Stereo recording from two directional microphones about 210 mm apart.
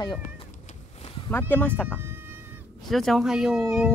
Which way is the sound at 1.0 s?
25° left (ahead or behind).